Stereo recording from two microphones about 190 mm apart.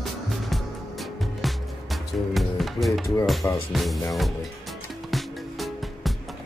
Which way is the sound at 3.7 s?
Centre (ahead or behind).